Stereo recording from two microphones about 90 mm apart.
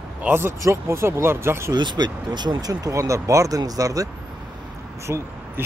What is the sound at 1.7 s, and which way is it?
Speech, 55° right (ahead or behind).